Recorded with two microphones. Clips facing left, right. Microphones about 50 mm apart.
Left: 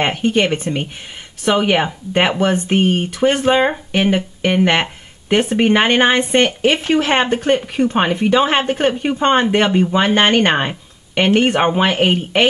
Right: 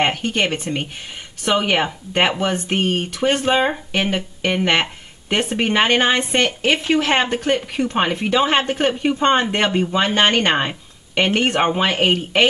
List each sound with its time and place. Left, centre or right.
0.0 s speech: centre
5.6 s a woman's voice: centre
9.7 s speech: centre